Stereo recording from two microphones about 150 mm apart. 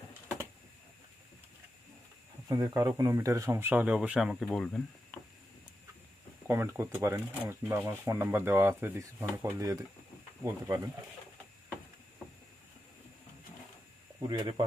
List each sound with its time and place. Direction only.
2.4 s speech: 25° right (ahead or behind); by 4.8 s 5° left (ahead or behind)
6.4 s speech: 15° right (ahead or behind)
14.2 s speech: 30° right (ahead or behind)